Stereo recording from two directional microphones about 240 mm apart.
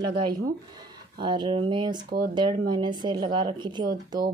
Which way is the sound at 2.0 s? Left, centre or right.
Right.